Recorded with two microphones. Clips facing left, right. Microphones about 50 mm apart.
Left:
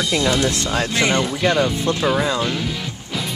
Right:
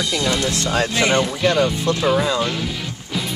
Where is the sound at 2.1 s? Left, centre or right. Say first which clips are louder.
Right 2 dB; centre.